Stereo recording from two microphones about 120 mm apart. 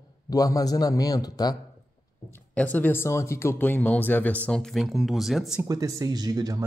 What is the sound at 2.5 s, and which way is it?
Speech, 15° left (ahead or behind).